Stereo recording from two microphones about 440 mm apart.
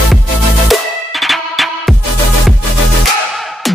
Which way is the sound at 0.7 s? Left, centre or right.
Centre.